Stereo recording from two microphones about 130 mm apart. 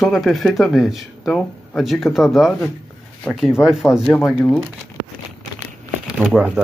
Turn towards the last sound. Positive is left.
turn(degrees=-5)  # may be behind; listen again after turning